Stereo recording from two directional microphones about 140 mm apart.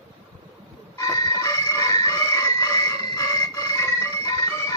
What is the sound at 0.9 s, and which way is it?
Chicken, 25° left (ahead or behind).